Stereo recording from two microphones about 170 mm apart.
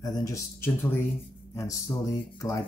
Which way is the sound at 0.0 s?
20° left (ahead or behind).